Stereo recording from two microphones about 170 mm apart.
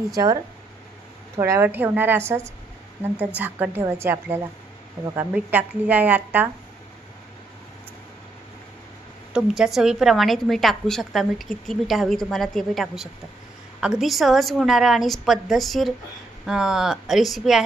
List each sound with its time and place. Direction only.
0.1 s speech: 20° right (ahead or behind)
9.3 s a woman's voice: 5° right (ahead or behind)